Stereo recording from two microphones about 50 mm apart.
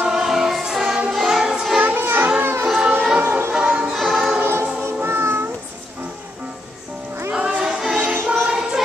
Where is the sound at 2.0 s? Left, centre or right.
Right.